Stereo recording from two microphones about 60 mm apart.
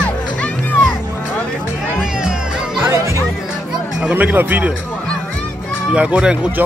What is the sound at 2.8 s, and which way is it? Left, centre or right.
Music, right.